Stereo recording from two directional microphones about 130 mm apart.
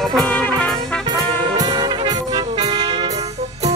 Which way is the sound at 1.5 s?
35° right (ahead or behind).